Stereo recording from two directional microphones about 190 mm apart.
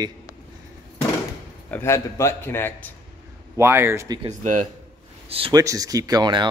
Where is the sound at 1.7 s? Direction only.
15° left (ahead or behind).